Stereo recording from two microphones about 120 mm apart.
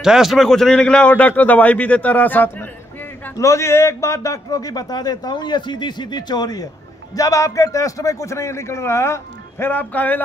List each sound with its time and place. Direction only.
0.0 s a man's voice: 5° right (ahead or behind); by 10.2 s 15° left (ahead or behind)